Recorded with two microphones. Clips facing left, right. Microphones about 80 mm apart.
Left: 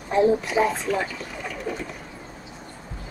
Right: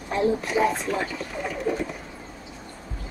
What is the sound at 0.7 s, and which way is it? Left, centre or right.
Speech, centre.